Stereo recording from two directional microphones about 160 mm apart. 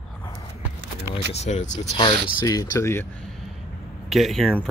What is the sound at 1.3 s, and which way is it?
Speech, 45° left (ahead or behind).